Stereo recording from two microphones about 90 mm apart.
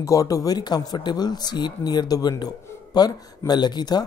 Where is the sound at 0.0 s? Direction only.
40° left (ahead or behind).